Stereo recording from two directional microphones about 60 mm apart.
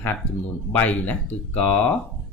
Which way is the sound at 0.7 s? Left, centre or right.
Left.